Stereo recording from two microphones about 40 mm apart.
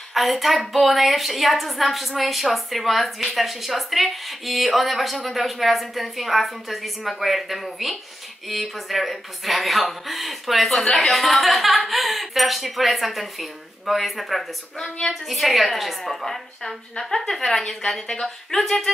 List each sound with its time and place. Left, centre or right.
0.1 s a woman's voice: centre
14.8 s a woman's voice: left
15.2 s a woman's voice: centre